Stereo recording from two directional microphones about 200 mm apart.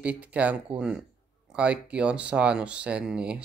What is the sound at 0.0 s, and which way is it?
Speech, 5° right (ahead or behind).